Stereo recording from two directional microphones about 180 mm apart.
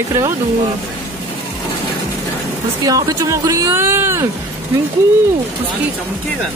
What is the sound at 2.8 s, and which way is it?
Speech, 20° right (ahead or behind).